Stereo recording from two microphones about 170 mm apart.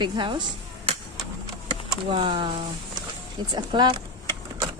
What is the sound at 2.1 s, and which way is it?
Speech, 30° right (ahead or behind).